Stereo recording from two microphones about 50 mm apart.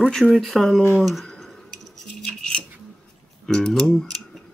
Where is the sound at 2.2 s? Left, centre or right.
Centre.